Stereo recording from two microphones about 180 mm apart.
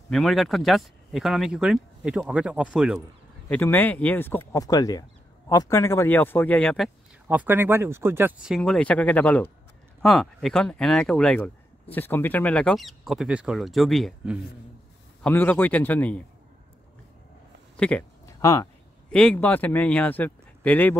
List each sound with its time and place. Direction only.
0.1 s speech: centre (ahead or behind)
3.4 s speech: 10° left (ahead or behind)
7.2 s speech: 10° right (ahead or behind)
15.2 s speech: 10° left (ahead or behind)
17.7 s speech: 5° left (ahead or behind)
18.2 s a sound: 15° left (ahead or behind)
19.0 s speech: 5° left (ahead or behind)